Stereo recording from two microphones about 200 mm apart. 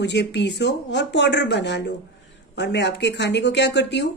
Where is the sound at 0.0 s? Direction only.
60° left (ahead or behind).